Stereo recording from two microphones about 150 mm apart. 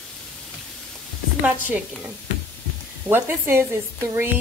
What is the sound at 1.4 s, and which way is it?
Speech, 10° right (ahead or behind).